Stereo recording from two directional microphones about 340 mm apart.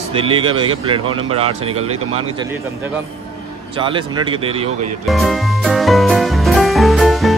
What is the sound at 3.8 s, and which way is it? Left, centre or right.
Speech, centre.